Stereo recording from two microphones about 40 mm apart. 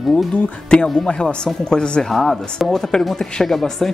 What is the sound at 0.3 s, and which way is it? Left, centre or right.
Speech, left.